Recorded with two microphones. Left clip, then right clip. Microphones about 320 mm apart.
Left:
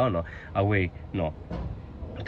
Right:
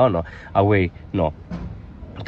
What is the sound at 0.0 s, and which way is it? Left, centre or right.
Speech, centre.